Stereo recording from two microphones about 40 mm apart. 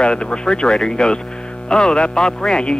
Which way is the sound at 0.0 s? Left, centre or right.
Left.